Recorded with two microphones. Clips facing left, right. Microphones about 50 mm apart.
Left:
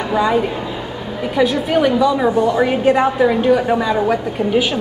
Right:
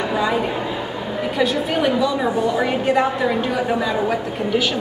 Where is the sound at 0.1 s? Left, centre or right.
Centre.